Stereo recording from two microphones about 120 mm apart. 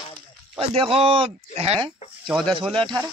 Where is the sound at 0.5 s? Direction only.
50° right (ahead or behind).